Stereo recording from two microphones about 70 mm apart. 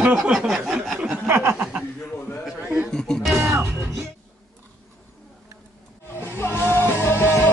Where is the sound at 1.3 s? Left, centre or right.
Right.